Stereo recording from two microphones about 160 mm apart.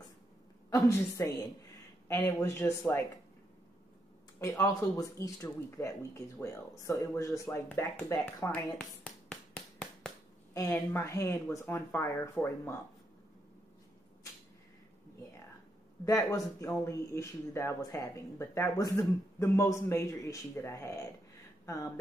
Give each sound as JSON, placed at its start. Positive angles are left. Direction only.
{"t": 0.7, "sound": "speech", "side_deg": 20}
{"t": 4.4, "sound": "speech", "side_deg": 20}
{"t": 8.8, "sound": "a sound", "side_deg": 5}
{"t": 10.5, "sound": "speech", "side_deg": 20}
{"t": 16.1, "sound": "speech", "side_deg": 20}